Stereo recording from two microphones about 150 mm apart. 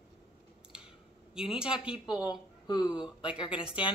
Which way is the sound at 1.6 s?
5° right (ahead or behind).